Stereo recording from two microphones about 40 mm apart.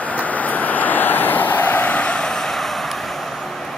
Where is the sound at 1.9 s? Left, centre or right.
Left; by 3.1 s centre.